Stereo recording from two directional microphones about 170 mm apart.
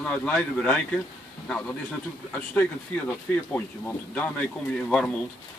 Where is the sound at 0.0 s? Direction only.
5° left (ahead or behind).